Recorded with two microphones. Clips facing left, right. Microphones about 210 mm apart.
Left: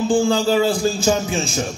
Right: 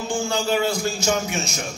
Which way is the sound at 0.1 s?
35° left (ahead or behind).